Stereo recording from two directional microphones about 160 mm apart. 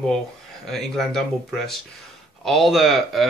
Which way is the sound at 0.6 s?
Centre (ahead or behind).